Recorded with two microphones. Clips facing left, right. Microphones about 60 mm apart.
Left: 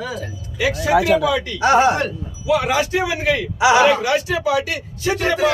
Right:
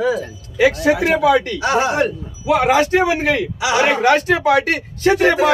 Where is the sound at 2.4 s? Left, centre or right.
Right.